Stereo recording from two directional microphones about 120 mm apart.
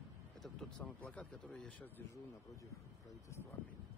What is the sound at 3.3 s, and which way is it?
Speech, 20° left (ahead or behind).